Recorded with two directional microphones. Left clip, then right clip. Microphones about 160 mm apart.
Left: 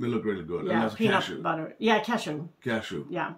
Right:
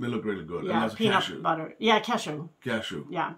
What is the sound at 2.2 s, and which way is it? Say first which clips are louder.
Speech: left 1 dB; 5° right (ahead or behind).